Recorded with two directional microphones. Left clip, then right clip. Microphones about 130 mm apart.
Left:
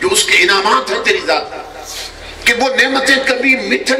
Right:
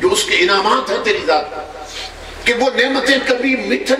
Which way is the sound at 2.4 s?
35° left (ahead or behind).